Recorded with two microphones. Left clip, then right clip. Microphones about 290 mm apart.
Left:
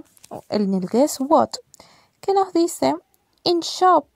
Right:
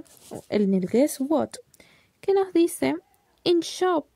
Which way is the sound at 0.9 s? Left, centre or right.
Centre.